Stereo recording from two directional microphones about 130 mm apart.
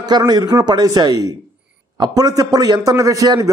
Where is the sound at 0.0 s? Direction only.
30° right (ahead or behind).